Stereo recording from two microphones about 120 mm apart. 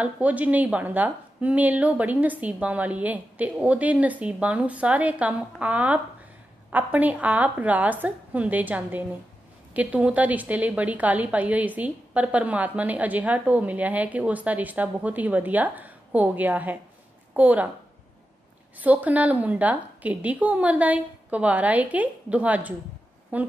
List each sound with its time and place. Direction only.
0.0 s a woman's voice: 10° right (ahead or behind)
18.8 s a woman's voice: 15° right (ahead or behind)